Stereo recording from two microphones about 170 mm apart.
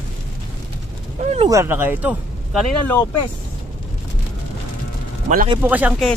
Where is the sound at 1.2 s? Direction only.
40° right (ahead or behind).